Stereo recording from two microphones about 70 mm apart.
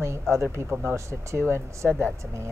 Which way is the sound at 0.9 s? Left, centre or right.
Right.